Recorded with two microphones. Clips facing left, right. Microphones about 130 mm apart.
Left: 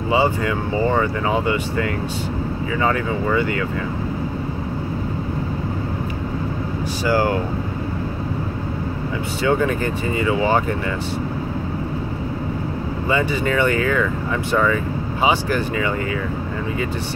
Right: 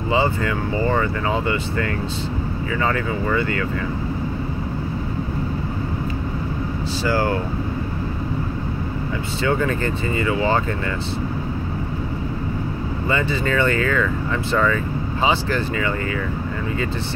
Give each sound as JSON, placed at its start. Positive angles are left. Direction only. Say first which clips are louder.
{"t": 0.1, "sound": "speech", "louder": "left 2 dB", "side_deg": 15}
{"t": 7.1, "sound": "speech", "louder": "left 2 dB", "side_deg": 15}
{"t": 9.4, "sound": "speech", "louder": "left 2 dB", "side_deg": 15}
{"t": 13.1, "sound": "speech", "louder": "left 2 dB", "side_deg": 15}